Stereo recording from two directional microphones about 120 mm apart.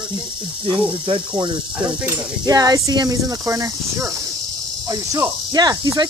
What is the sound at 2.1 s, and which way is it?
Speech, 30° right (ahead or behind).